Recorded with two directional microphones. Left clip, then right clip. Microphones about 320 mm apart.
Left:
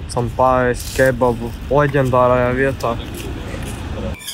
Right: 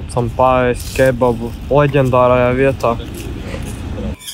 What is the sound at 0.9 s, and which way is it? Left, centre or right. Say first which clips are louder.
Speech: right 2 dB; centre.